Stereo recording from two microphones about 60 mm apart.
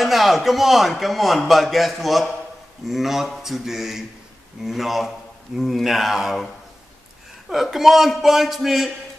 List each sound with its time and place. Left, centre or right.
0.0 s a man's voice: centre
7.4 s a man's voice: centre